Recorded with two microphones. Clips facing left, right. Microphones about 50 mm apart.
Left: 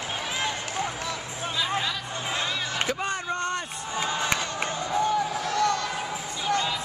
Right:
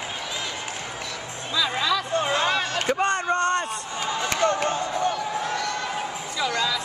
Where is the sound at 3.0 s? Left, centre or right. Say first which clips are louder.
Right 6 dB; right.